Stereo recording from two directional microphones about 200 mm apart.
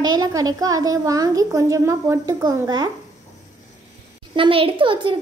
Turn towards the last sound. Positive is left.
turn(degrees=-25)  # may be behind; listen again after turning